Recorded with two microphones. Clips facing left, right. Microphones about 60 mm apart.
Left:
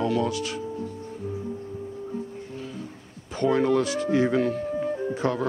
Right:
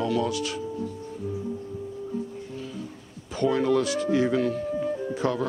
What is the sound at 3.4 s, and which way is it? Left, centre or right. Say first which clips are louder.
Music: left 1 dB; left.